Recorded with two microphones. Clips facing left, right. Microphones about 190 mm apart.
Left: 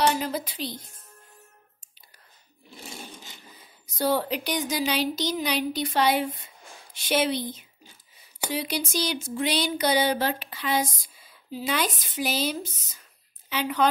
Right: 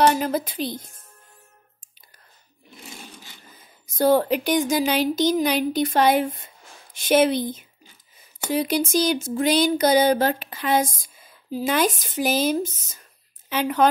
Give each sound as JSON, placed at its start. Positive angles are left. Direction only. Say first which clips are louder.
{"t": 0.0, "sound": "speech", "louder": "right 5 dB", "side_deg": -50}
{"t": 3.8, "sound": "speech", "louder": "right 7 dB", "side_deg": -50}